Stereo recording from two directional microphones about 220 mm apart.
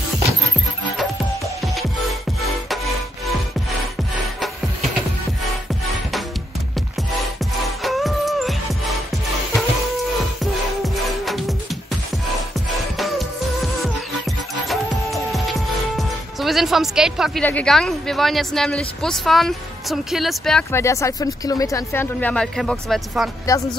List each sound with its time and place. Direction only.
1.6 s music: centre (ahead or behind)
7.2 s music: centre (ahead or behind)
10.4 s music: centre (ahead or behind)
14.7 s music: centre (ahead or behind)
16.0 s speech: centre (ahead or behind)